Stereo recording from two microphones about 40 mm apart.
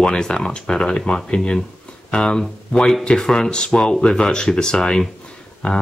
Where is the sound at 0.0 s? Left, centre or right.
Centre.